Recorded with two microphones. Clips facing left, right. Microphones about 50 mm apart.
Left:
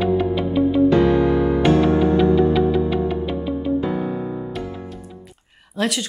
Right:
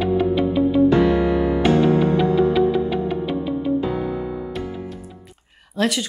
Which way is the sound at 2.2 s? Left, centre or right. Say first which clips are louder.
Left 1 dB; centre.